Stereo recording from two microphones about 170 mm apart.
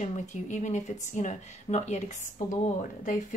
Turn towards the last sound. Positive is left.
turn(degrees=50)  # may be behind; listen again after turning